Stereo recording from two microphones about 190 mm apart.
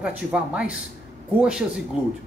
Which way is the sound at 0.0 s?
5° right (ahead or behind).